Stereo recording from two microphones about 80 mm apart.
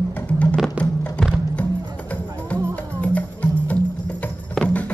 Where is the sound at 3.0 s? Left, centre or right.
Centre.